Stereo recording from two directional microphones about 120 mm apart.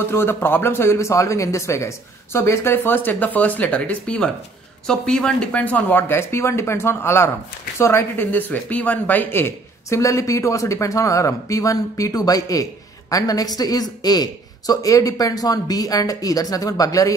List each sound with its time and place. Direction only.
0.0 s a man's voice: 20° left (ahead or behind)